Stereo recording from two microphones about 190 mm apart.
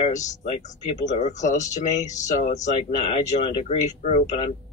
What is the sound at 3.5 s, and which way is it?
Speech, 25° left (ahead or behind).